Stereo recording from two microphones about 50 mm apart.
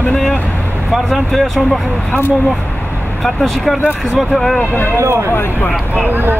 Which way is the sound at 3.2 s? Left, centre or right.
Centre.